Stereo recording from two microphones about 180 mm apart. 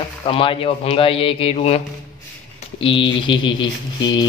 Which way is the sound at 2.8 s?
30° left (ahead or behind).